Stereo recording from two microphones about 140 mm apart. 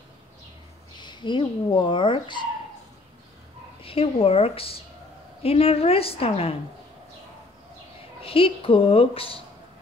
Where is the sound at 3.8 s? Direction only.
40° left (ahead or behind).